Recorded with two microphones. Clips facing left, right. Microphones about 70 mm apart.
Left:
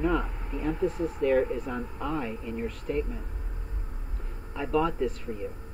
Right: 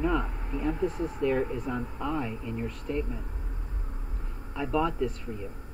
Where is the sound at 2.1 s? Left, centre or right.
Centre.